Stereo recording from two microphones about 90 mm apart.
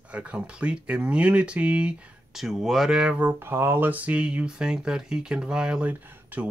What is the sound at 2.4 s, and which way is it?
Speech, centre (ahead or behind).